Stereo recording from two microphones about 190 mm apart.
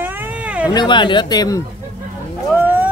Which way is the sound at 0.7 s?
25° left (ahead or behind).